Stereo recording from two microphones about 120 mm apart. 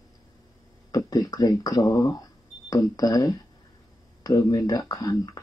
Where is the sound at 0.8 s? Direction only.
30° left (ahead or behind).